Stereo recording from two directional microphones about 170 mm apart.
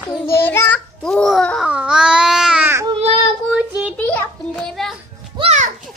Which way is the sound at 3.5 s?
5° right (ahead or behind).